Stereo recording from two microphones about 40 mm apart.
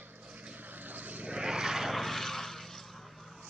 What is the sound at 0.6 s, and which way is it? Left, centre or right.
Vehicle, right.